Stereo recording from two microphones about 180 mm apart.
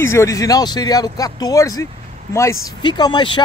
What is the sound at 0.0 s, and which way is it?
Speech, 15° left (ahead or behind).